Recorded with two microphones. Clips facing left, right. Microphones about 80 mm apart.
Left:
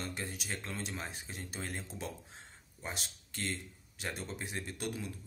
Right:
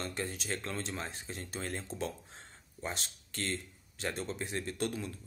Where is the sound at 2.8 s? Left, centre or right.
Centre.